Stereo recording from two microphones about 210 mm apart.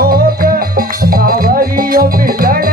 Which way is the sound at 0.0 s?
45° right (ahead or behind).